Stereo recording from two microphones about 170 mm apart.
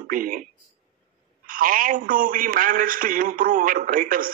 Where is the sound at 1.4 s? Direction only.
55° right (ahead or behind).